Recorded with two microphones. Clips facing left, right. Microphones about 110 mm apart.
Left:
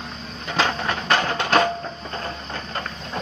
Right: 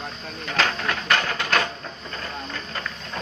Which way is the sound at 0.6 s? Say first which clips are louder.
Left 2 dB; 20° left (ahead or behind).